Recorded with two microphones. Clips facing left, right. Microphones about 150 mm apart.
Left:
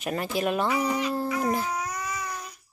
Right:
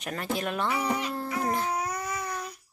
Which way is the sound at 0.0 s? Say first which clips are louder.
Left 4 dB; 10° left (ahead or behind).